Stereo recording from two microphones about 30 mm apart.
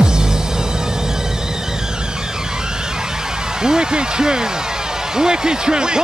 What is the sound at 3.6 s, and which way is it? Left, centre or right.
Speech, right.